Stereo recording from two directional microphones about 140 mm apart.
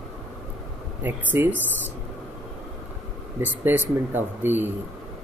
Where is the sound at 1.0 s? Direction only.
15° right (ahead or behind).